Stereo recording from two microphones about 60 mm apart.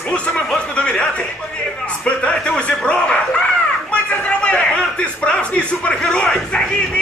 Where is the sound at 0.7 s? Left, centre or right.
Centre.